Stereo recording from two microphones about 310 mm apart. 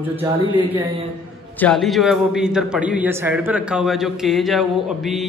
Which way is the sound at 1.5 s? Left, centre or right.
Centre.